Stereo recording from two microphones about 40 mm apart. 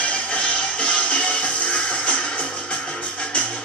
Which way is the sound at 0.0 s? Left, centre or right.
Left.